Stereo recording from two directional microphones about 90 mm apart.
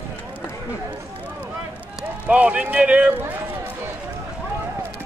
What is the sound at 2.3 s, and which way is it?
Speech, 15° right (ahead or behind).